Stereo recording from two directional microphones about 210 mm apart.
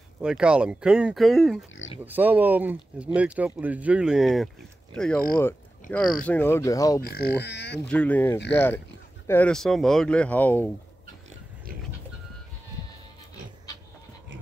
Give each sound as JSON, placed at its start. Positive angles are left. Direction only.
{"t": 0.2, "sound": "speech", "side_deg": -5}
{"t": 7.0, "sound": "speech", "side_deg": 45}
{"t": 7.8, "sound": "speech", "side_deg": 5}